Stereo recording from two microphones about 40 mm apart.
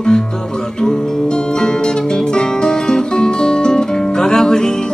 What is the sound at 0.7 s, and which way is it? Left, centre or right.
Music, centre.